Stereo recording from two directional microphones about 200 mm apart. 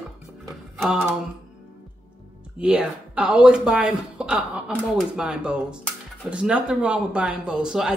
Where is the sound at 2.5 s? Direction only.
5° right (ahead or behind).